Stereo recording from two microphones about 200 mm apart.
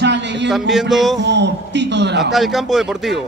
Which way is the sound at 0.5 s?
Centre (ahead or behind).